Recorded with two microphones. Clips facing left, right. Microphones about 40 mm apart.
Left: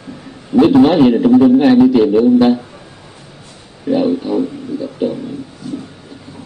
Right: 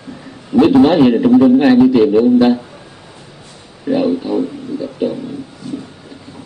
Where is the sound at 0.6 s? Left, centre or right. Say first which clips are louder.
Even; centre.